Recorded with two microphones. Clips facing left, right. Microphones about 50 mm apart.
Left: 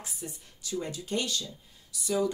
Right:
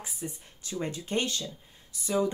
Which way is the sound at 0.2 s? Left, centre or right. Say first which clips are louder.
Right 4 dB; centre.